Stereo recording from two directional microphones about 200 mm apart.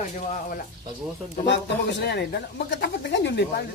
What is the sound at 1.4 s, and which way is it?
Speech, 60° left (ahead or behind).